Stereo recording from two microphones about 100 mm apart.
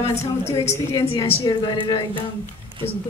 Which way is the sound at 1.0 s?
65° left (ahead or behind).